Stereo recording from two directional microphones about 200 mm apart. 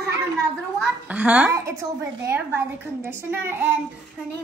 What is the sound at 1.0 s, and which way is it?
A woman's voice, 5° right (ahead or behind).